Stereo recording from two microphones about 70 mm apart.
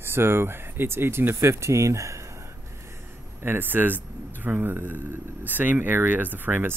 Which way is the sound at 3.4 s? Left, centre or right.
Right.